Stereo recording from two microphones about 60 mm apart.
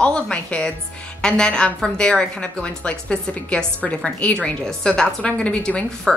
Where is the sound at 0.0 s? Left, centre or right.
Centre.